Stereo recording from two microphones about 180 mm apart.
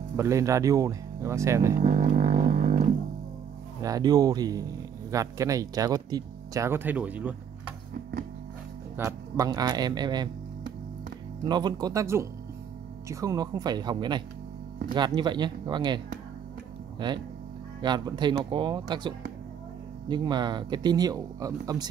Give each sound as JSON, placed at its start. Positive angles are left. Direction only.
{"t": 0.2, "sound": "speech", "side_deg": -15}
{"t": 1.8, "sound": "music", "side_deg": -45}
{"t": 3.8, "sound": "speech", "side_deg": -20}
{"t": 7.9, "sound": "music", "side_deg": -55}
{"t": 8.9, "sound": "speech", "side_deg": -15}
{"t": 11.4, "sound": "speech", "side_deg": -25}
{"t": 17.0, "sound": "speech", "side_deg": -25}